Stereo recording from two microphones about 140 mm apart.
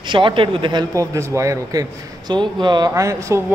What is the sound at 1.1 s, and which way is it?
A man's voice, 20° right (ahead or behind).